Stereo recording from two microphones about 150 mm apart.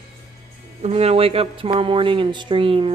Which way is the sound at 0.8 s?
45° right (ahead or behind).